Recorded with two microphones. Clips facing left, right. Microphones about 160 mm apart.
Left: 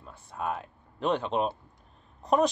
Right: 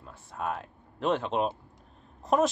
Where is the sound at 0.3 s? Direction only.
Centre (ahead or behind).